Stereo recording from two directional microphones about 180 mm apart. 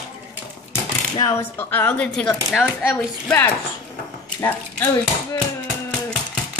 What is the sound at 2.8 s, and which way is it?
Speech, 10° left (ahead or behind).